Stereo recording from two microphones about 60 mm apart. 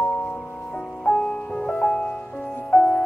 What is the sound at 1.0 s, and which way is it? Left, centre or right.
Music, centre.